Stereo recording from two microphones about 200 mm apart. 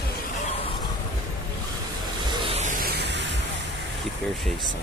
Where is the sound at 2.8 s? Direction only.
55° right (ahead or behind).